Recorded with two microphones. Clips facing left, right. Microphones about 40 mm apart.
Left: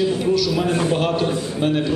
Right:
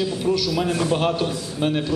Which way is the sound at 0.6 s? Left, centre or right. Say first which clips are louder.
Left 2 dB; left.